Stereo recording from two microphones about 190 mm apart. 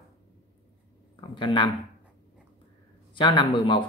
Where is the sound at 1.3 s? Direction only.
25° left (ahead or behind).